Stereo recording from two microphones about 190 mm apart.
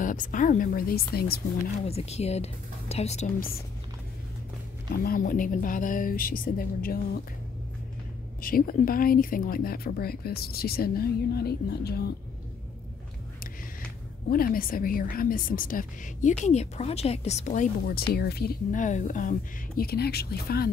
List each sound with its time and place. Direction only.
0.0 s a woman's voice: 45° left (ahead or behind)
1.9 s speech: 35° left (ahead or behind)
4.9 s a woman's voice: 50° left (ahead or behind)
8.4 s a woman's voice: 50° left (ahead or behind)
14.3 s a woman's voice: 50° left (ahead or behind)
19.8 s speech: 55° left (ahead or behind)